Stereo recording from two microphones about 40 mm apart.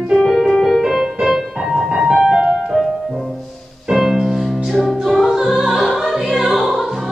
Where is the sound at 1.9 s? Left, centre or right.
Centre.